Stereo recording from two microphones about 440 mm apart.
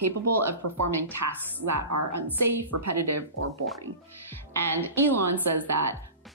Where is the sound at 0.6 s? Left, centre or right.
Right.